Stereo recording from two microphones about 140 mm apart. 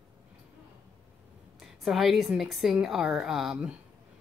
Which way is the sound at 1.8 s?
Centre (ahead or behind).